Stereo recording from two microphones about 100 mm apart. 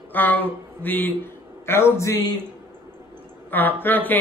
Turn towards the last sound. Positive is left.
turn(degrees=20)  # may be behind; listen again after turning